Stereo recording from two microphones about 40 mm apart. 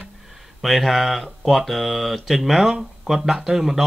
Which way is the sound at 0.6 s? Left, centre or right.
Centre.